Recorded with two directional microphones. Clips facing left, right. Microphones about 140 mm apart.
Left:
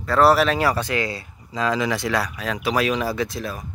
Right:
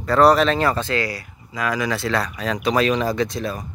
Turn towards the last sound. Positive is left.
turn(degrees=5)  # may be behind; listen again after turning